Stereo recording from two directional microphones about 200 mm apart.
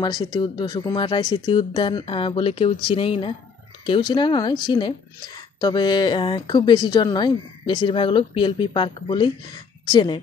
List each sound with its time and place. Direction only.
0.0 s speech: 20° left (ahead or behind)